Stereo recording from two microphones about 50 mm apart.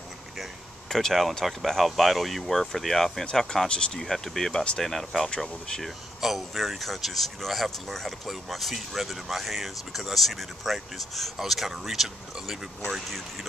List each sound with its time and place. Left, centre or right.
0.8 s speech: centre
4.0 s speech: centre
6.2 s speech: centre